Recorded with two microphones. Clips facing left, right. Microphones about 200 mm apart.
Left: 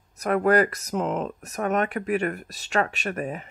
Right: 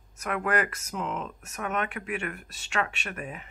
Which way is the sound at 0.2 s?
40° left (ahead or behind).